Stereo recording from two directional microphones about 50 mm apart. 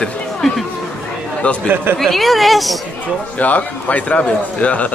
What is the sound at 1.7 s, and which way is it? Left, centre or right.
Speech, right.